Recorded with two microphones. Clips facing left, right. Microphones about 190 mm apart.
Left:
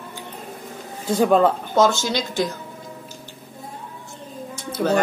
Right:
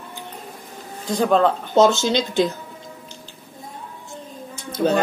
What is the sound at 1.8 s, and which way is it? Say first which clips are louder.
Speech: right 3 dB; 20° right (ahead or behind).